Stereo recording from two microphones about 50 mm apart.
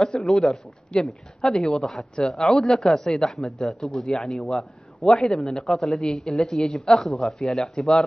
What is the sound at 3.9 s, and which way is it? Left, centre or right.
Speech, centre.